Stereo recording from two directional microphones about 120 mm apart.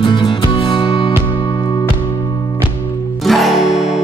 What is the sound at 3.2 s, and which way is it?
Music, centre (ahead or behind).